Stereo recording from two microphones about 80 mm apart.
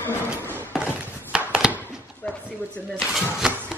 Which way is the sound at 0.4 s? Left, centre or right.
Right.